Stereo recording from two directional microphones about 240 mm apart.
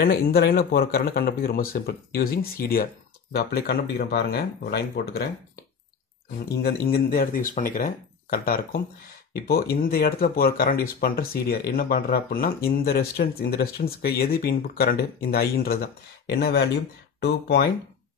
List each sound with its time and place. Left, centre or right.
0.0 s speech: left
6.6 s speech: left